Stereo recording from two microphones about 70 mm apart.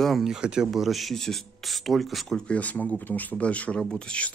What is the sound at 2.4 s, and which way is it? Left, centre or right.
Speech, centre.